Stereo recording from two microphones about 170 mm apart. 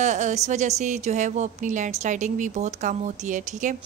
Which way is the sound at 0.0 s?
45° right (ahead or behind).